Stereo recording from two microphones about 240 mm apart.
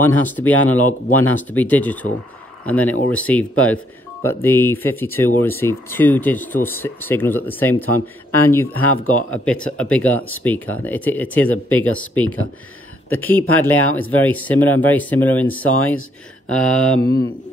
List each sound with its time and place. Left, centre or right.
0.0 s speech: centre
2.6 s a sound: centre
3.1 s speech: centre
13.1 s speech: centre
13.8 s speech: left
14.1 s speech: centre
16.4 s a sound: centre
17.0 s speech: centre